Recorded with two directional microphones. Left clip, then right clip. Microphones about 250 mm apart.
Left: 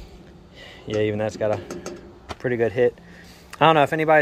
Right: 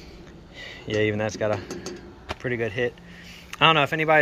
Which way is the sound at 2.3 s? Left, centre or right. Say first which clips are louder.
Left 6 dB; left.